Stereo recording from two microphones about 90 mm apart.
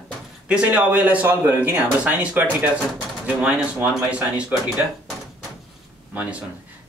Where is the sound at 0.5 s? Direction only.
15° right (ahead or behind).